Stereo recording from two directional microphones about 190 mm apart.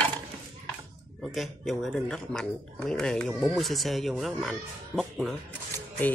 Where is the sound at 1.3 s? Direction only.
Centre (ahead or behind).